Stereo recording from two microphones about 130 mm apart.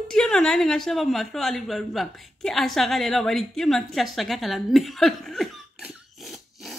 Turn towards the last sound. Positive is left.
turn(degrees=0)  # may be behind; listen again after turning